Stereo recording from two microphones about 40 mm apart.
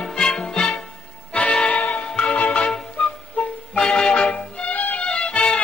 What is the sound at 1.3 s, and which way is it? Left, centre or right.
Music, left.